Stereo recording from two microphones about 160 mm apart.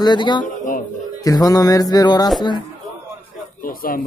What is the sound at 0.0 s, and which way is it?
Music, 30° left (ahead or behind).